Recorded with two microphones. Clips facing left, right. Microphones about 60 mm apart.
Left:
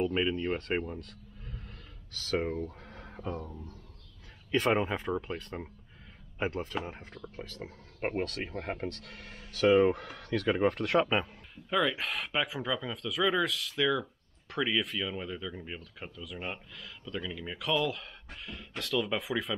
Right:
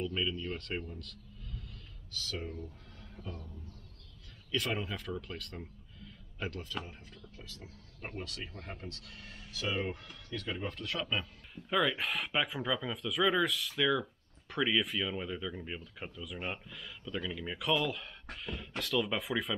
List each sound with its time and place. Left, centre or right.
0.0 s speech: left
2.9 s a sound: left
4.5 s speech: left
11.5 s speech: centre